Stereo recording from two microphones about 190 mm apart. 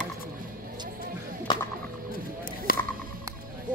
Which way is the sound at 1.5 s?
25° left (ahead or behind).